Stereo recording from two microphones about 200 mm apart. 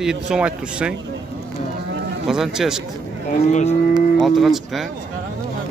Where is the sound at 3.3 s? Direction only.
35° left (ahead or behind).